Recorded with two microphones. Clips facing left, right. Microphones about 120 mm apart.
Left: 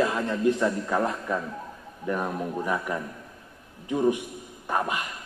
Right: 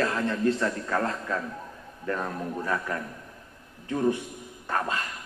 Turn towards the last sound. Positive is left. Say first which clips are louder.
# left 2 dB
turn(degrees=15)  # may be behind; listen again after turning